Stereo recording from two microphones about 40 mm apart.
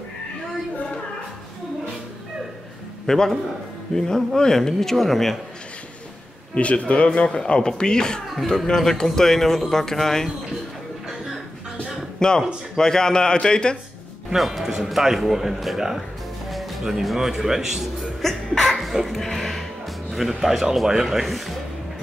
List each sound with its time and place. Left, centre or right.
3.1 s speech: centre
6.5 s speech: left
7.2 s a man's voice: left
12.2 s a man's voice: centre
14.3 s speech: centre
16.4 s music: centre
17.0 s speech: centre
18.2 s music: centre
20.1 s speech: centre